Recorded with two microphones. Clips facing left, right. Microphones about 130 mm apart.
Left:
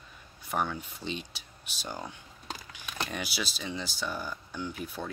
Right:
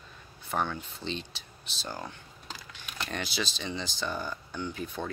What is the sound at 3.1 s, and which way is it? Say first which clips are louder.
Speech: right 1 dB; 10° left (ahead or behind).